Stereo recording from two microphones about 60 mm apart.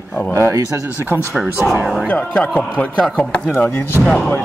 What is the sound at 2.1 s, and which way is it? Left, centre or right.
Speech, centre.